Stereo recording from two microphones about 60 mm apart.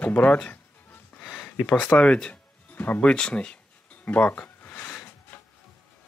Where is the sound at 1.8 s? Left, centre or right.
Left.